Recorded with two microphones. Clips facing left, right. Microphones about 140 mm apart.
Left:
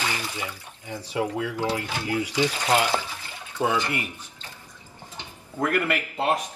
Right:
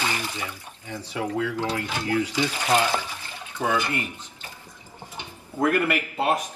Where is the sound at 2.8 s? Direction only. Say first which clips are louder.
Even; 15° left (ahead or behind).